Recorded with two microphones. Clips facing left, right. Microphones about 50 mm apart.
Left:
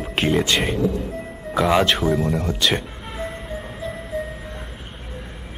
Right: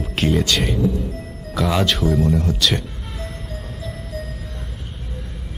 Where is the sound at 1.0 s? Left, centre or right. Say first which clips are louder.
Left 1 dB; centre.